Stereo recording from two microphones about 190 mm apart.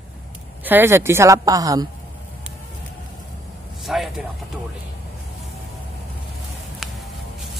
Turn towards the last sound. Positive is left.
turn(degrees=0)  # may be behind; listen again after turning